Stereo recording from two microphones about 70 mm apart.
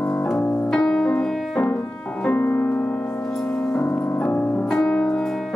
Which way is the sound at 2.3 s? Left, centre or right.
Left.